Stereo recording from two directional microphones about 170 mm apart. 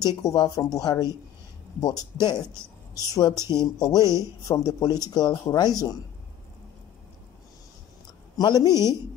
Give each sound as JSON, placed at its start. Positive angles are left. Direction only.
{"t": 0.0, "sound": "speech", "side_deg": 20}
{"t": 8.4, "sound": "speech", "side_deg": 25}